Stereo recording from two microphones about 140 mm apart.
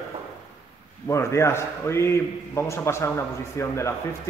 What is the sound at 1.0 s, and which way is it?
Speech, 20° left (ahead or behind).